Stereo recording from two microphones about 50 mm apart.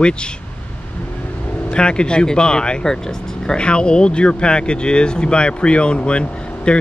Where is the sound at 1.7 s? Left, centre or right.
Centre.